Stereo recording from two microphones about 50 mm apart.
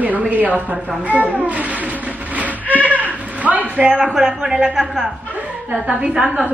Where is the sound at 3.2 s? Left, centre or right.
Right.